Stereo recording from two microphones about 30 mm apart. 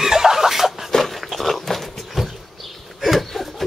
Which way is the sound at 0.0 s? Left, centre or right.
Centre.